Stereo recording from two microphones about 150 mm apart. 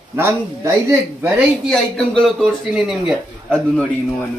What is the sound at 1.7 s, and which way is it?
A man's voice, centre (ahead or behind).